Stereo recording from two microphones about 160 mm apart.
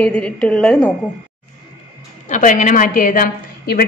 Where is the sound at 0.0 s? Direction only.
5° left (ahead or behind).